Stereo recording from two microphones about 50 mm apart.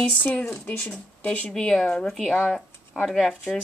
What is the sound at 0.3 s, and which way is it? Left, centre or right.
Speech, left.